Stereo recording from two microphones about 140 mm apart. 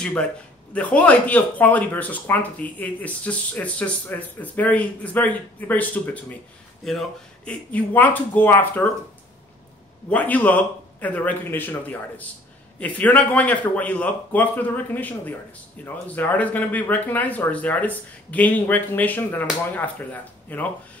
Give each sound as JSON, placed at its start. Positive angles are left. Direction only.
{"t": 0.0, "sound": "speech", "side_deg": 10}
{"t": 7.7, "sound": "speech", "side_deg": 10}
{"t": 10.0, "sound": "speech", "side_deg": 10}